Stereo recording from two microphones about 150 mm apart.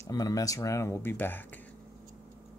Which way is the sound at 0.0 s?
25° left (ahead or behind).